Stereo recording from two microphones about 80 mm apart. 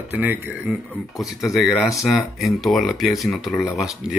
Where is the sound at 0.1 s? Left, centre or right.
Right.